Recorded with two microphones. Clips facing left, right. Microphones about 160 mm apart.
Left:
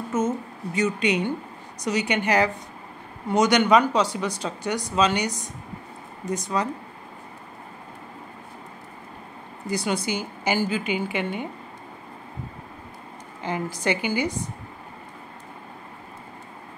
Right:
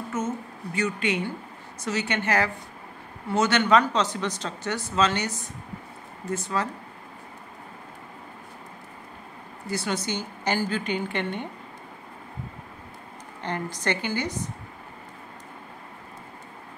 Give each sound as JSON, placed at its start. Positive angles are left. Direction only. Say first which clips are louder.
{"t": 0.1, "sound": "a sound", "louder": "left 5 dB", "side_deg": 20}
{"t": 0.7, "sound": "speech", "louder": "left 4 dB", "side_deg": 20}
{"t": 9.7, "sound": "speech", "louder": "left 3 dB", "side_deg": 15}
{"t": 13.4, "sound": "speech", "louder": "left 3 dB", "side_deg": 5}